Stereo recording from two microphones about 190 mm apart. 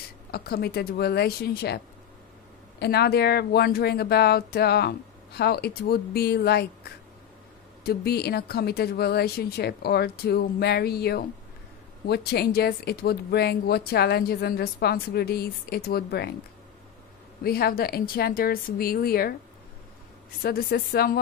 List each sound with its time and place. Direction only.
0.3 s speech: 55° left (ahead or behind)
2.8 s speech: 60° left (ahead or behind)
17.4 s speech: 55° left (ahead or behind)
20.4 s speech: 55° left (ahead or behind)